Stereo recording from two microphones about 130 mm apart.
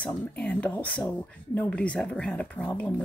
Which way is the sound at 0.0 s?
10° left (ahead or behind).